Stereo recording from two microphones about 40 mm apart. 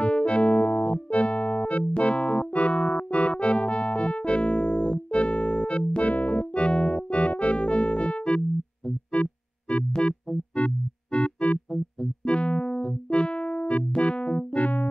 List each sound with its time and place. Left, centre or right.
0.0 s keyboard: left
6.0 s keyboard: left
9.1 s music: left
12.3 s keyboard: left
14.5 s keyboard: left